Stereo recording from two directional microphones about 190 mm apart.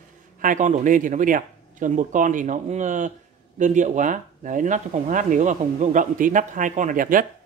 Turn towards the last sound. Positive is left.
turn(degrees=-45)  # may be behind; listen again after turning